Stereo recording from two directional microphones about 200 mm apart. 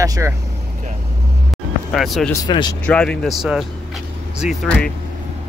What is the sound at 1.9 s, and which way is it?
Speech, centre (ahead or behind).